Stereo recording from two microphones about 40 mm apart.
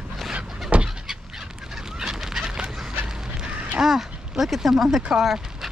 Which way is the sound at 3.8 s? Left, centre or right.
Centre.